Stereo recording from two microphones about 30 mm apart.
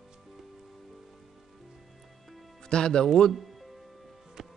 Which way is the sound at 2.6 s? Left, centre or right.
Left.